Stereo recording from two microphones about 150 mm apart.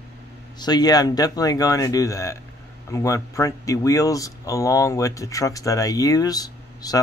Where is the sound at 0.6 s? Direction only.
25° left (ahead or behind).